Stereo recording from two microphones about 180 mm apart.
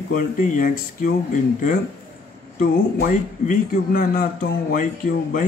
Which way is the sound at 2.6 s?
50° left (ahead or behind).